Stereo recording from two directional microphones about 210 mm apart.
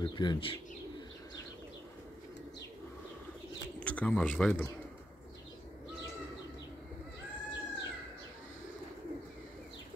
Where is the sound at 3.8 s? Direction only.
5° left (ahead or behind).